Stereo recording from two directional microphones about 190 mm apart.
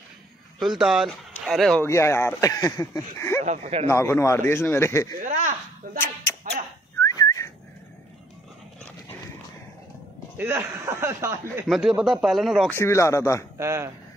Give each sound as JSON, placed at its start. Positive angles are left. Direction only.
{"t": 0.6, "sound": "speech", "side_deg": 0}
{"t": 1.9, "sound": "speech", "side_deg": 15}
{"t": 3.4, "sound": "speech", "side_deg": -35}
{"t": 3.8, "sound": "speech", "side_deg": 15}
{"t": 5.2, "sound": "speech", "side_deg": -40}
{"t": 7.0, "sound": "whistling", "side_deg": 15}
{"t": 10.3, "sound": "speech", "side_deg": -15}
{"t": 11.6, "sound": "speech", "side_deg": 0}
{"t": 12.7, "sound": "speech", "side_deg": 15}
{"t": 13.6, "sound": "speech", "side_deg": -15}